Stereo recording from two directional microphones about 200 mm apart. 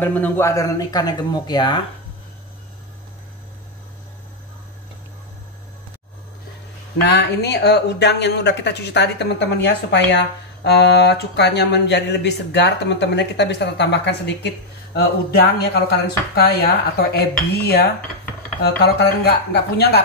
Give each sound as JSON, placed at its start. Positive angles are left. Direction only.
{"t": 0.0, "sound": "speech", "side_deg": 10}
{"t": 7.1, "sound": "speech", "side_deg": 55}